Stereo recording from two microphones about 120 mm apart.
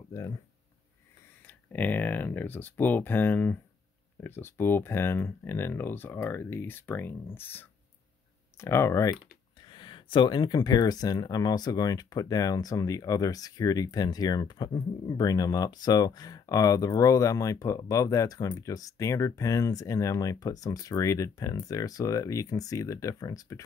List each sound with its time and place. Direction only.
0.1 s speech: 25° left (ahead or behind)
1.5 s speech: 15° left (ahead or behind)
9.6 s speech: 40° left (ahead or behind)